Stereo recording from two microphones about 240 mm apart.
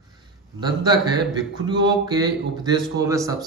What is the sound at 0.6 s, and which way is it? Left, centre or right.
A man's voice, centre.